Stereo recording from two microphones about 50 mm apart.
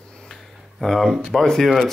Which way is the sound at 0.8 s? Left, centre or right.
Centre.